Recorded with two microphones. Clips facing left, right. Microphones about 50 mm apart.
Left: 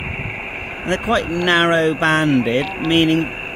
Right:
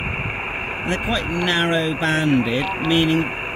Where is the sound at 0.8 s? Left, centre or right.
Left.